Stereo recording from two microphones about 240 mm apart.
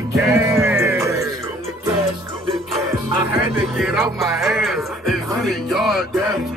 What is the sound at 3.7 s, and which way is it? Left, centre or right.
Music, centre.